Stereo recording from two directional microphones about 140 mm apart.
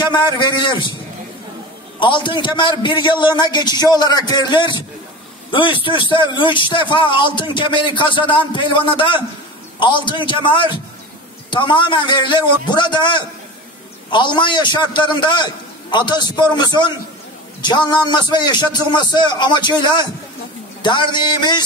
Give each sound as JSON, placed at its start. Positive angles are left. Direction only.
{"t": 0.0, "sound": "a man's voice", "side_deg": 30}
{"t": 2.0, "sound": "a man's voice", "side_deg": 35}